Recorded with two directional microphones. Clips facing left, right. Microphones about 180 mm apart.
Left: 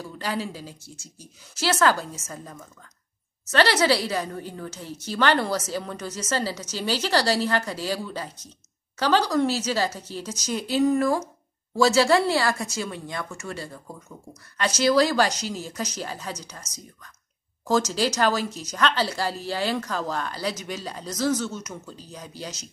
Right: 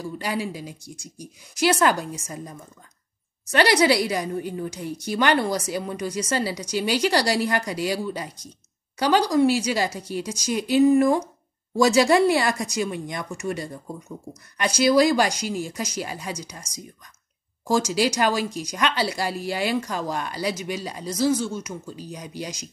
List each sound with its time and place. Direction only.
0.0 s a woman's voice: 10° right (ahead or behind)